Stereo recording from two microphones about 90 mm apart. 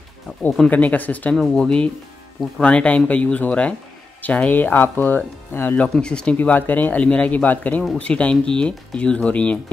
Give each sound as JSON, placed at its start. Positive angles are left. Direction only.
{"t": 0.3, "sound": "speech", "side_deg": 0}
{"t": 0.7, "sound": "speech", "side_deg": 15}
{"t": 5.9, "sound": "speech", "side_deg": 10}